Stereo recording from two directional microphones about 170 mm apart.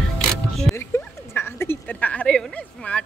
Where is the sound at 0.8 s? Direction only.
15° left (ahead or behind).